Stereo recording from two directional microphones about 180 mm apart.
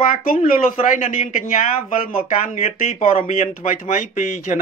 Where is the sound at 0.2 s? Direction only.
55° left (ahead or behind).